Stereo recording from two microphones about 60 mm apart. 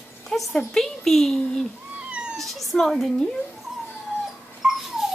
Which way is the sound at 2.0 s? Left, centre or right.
Centre.